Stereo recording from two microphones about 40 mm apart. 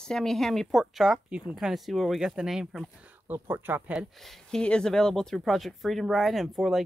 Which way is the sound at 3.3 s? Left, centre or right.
Right.